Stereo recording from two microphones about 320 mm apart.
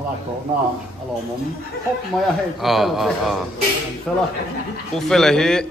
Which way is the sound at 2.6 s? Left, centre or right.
Centre.